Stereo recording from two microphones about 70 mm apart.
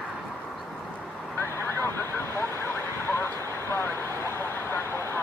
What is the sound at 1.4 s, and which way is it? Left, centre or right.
Vehicle, left.